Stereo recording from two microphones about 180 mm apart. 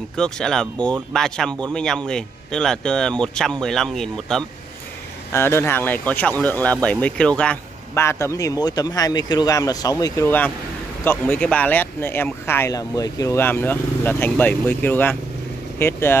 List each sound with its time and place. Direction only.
0.1 s speech: 5° left (ahead or behind)
5.3 s speech: 15° left (ahead or behind)